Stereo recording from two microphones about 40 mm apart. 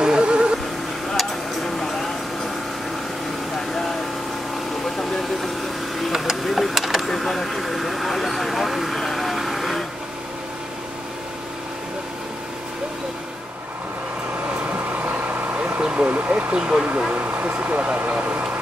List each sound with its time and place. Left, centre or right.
0.0 s music: right
1.1 s a sound: centre
4.8 s vehicle: centre
6.4 s a sound: centre
7.1 s vehicle: centre
14.7 s vehicle: right
15.8 s vehicle: right
16.1 s a sound: right
17.1 s vehicle: right